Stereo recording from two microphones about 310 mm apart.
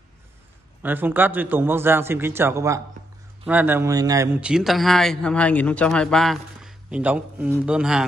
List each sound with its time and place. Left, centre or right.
0.8 s a man's voice: centre